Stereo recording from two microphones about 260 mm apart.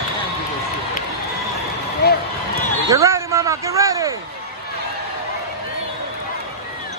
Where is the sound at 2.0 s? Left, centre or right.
Left.